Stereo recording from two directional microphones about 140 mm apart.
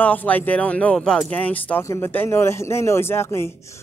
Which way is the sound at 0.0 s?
10° left (ahead or behind).